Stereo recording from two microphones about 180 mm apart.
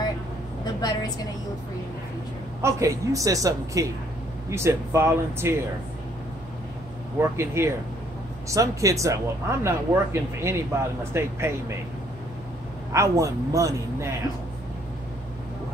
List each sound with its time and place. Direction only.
0.7 s a woman's voice: 20° left (ahead or behind)
2.6 s speech: 15° right (ahead or behind)
7.2 s speech: 15° right (ahead or behind)
12.9 s speech: 15° right (ahead or behind)